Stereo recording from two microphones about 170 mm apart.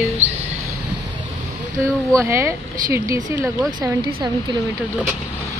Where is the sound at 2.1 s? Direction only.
15° right (ahead or behind).